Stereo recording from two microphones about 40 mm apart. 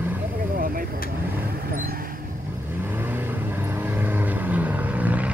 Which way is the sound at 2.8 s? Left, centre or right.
Right.